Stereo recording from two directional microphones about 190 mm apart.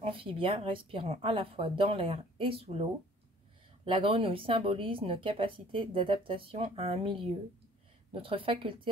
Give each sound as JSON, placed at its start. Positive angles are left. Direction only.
{"t": 0.0, "sound": "speech", "side_deg": -30}